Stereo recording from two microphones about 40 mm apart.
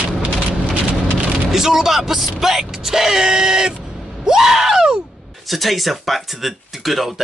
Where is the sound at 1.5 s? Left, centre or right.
Centre.